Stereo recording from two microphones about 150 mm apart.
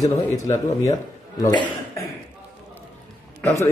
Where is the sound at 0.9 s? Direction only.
20° left (ahead or behind).